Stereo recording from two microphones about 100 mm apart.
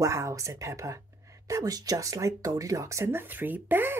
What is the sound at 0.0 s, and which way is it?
Speech, 30° right (ahead or behind).